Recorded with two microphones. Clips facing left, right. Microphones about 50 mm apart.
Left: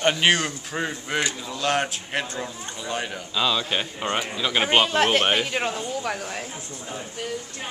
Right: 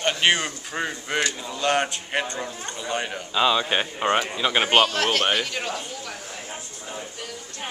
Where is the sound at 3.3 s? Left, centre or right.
Centre.